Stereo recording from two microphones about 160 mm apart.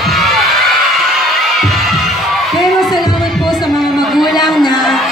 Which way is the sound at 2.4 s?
Centre (ahead or behind).